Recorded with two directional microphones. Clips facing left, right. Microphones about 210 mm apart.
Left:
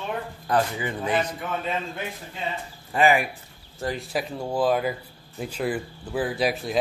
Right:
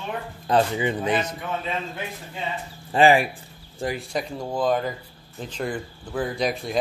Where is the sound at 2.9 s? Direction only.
30° right (ahead or behind).